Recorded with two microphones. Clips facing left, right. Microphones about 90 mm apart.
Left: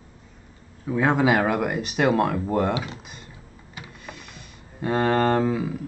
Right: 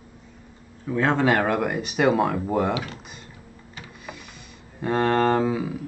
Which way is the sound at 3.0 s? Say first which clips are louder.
Even; centre (ahead or behind).